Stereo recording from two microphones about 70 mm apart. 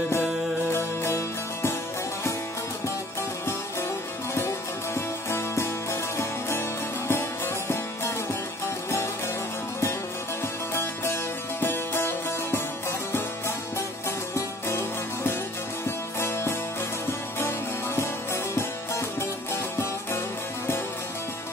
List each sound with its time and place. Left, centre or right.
0.7 s music: left
4.9 s music: left
7.1 s music: left
10.7 s music: left
14.3 s music: left
17.4 s music: left